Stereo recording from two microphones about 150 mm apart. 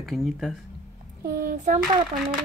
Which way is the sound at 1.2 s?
60° right (ahead or behind).